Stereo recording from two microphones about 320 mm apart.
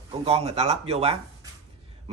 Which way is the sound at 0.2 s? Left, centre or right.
Centre.